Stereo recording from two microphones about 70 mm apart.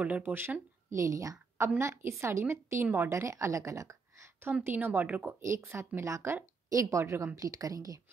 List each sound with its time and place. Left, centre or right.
0.0 s speech: right
0.9 s a woman's voice: right
2.0 s a woman's voice: right
4.6 s speech: right
5.4 s a woman's voice: right